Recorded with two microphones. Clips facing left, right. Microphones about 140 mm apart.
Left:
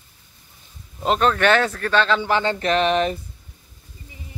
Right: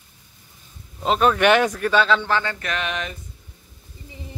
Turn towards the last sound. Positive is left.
turn(degrees=35)  # may be behind; listen again after turning